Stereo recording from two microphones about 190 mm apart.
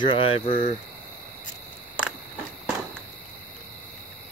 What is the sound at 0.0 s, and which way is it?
Speech, 25° left (ahead or behind).